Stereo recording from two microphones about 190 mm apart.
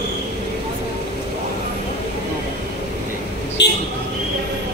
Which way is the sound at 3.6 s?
65° left (ahead or behind).